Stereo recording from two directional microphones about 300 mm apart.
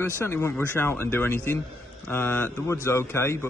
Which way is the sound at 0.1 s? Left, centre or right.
Centre.